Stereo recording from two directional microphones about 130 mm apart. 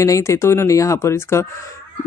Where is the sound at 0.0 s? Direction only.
25° left (ahead or behind).